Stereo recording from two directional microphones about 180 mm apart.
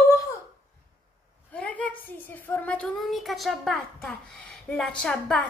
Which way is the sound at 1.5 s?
5° left (ahead or behind).